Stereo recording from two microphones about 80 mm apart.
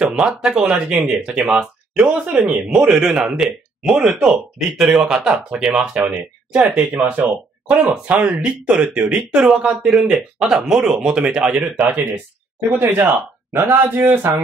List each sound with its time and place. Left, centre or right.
0.0 s speech: centre
2.2 s a man's voice: centre
2.7 s speech: centre
12.7 s a man's voice: right